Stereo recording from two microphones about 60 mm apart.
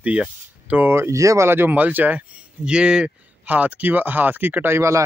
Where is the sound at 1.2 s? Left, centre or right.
Right.